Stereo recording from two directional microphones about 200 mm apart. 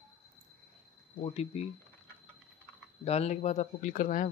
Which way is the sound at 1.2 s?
30° left (ahead or behind).